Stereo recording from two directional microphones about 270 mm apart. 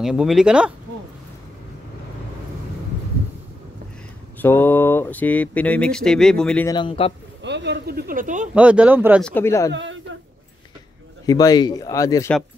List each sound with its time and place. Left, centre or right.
0.0 s speech: centre
4.4 s speech: centre
6.7 s a man's voice: centre
7.4 s speech: right
8.5 s speech: centre
9.3 s speech: centre
9.7 s a woman's voice: right
11.2 s speech: centre